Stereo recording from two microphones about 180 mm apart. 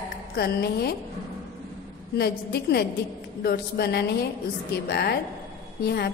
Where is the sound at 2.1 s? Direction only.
60° left (ahead or behind).